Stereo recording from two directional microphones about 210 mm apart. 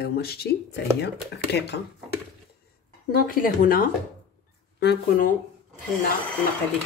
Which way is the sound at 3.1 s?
45° left (ahead or behind).